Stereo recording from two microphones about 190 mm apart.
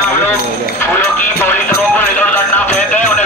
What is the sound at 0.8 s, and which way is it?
Music, 10° left (ahead or behind).